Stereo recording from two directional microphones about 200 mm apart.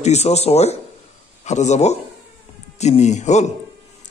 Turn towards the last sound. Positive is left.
turn(degrees=35)  # may be behind; listen again after turning